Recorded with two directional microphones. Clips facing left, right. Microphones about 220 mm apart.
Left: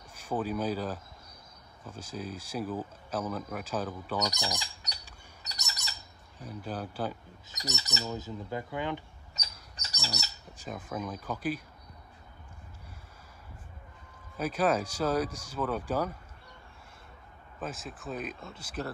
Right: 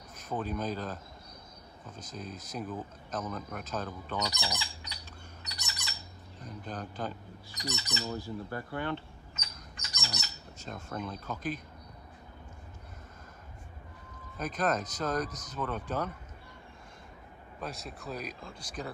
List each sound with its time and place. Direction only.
0.3 s speech: 10° left (ahead or behind)
4.2 s speech: 45° left (ahead or behind)
5.4 s squawk: 40° left (ahead or behind)
6.4 s speech: 10° left (ahead or behind)
7.5 s bird: 45° left (ahead or behind)
8.5 s speech: 15° left (ahead or behind)
9.3 s chirp: 40° left (ahead or behind)
10.7 s speech: 5° left (ahead or behind)
14.4 s speech: 10° left (ahead or behind)
17.6 s speech: centre (ahead or behind)